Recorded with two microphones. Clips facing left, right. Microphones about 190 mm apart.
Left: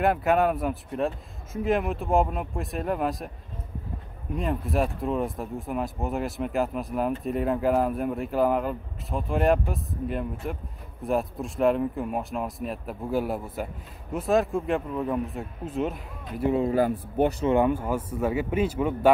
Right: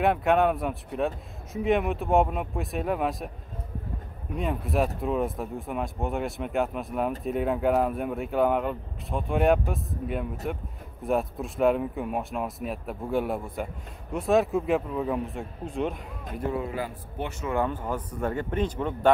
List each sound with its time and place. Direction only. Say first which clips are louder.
0.0 s speech: even; centre (ahead or behind)
4.3 s speech: left 1 dB; centre (ahead or behind)
16.6 s a man's voice: left 9 dB; 45° left (ahead or behind)
17.5 s speech: left 5 dB; 15° left (ahead or behind)